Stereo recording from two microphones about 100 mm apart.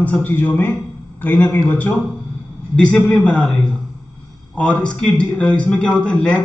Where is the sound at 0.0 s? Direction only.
15° left (ahead or behind).